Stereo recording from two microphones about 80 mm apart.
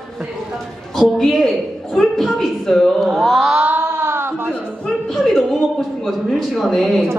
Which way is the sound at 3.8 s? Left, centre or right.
Right.